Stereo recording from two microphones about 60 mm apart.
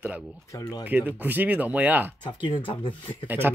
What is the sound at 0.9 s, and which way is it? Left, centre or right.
Speech, right.